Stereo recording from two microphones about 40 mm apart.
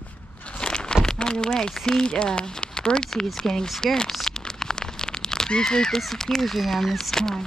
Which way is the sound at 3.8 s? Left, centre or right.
Centre.